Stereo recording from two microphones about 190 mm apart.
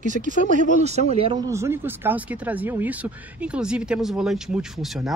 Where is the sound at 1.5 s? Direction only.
15° right (ahead or behind).